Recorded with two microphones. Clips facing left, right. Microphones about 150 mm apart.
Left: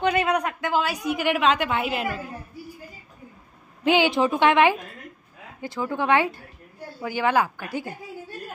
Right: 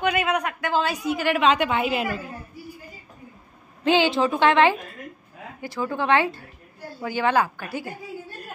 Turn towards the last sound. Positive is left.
turn(degrees=15)  # may be behind; listen again after turning